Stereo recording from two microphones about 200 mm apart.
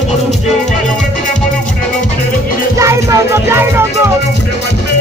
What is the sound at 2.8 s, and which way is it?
Music, 15° right (ahead or behind).